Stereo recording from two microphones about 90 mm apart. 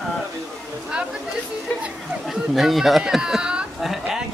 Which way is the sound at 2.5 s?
Centre (ahead or behind).